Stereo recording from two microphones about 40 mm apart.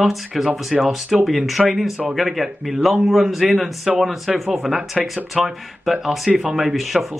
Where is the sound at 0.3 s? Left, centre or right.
Centre.